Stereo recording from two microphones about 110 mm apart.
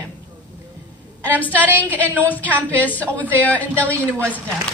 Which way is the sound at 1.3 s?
15° left (ahead or behind).